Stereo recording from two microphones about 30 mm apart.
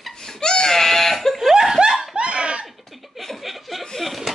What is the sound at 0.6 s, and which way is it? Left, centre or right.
Goat, centre.